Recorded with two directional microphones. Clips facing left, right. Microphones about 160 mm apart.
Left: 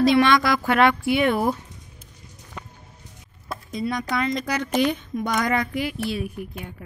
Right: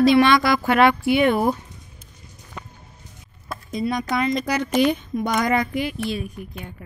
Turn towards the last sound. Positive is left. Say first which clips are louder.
# left 2 dB
turn(degrees=5)  # may be behind; listen again after turning